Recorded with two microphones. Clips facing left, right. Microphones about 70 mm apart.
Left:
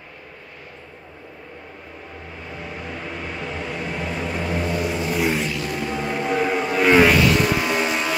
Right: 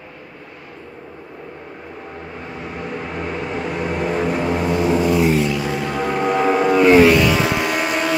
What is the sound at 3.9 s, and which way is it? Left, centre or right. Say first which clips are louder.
Vehicle: right 9 dB; right.